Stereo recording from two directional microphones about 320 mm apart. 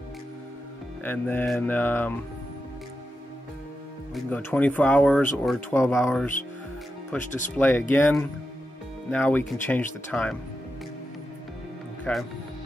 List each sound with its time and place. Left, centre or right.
1.0 s speech: centre
4.1 s speech: centre
7.2 s speech: left
7.5 s speech: centre
12.0 s speech: centre